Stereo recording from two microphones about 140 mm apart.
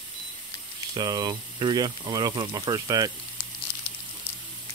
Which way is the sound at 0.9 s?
30° right (ahead or behind).